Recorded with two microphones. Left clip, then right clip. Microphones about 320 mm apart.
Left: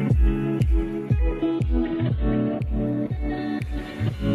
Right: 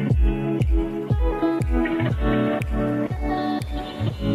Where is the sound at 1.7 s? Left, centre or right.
Right.